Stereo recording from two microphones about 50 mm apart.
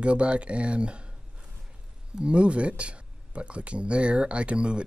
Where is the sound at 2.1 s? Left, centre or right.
Right.